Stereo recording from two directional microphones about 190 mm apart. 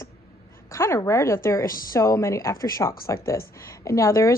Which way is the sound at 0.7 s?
15° left (ahead or behind).